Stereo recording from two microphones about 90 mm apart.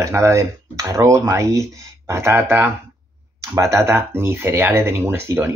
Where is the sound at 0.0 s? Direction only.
35° right (ahead or behind).